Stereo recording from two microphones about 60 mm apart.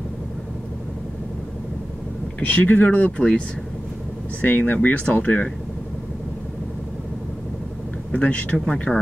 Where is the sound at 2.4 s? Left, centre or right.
Left.